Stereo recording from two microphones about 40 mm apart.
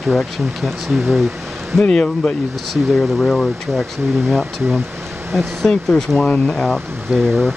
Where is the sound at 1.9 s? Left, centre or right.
Left.